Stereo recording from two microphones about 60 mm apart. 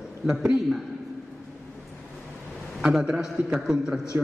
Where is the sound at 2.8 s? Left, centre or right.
Centre.